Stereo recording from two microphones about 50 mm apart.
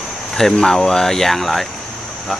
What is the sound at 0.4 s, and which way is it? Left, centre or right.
Speech, centre.